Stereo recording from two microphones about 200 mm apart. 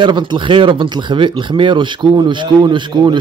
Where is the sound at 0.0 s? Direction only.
25° right (ahead or behind).